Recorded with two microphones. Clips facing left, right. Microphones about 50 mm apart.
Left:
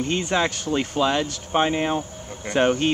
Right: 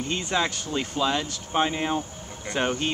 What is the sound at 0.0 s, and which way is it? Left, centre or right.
Speech, left.